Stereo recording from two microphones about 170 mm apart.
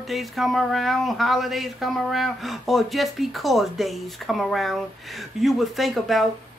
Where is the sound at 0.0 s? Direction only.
Centre (ahead or behind).